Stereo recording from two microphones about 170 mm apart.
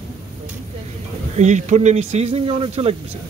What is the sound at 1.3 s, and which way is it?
Speech, 45° right (ahead or behind).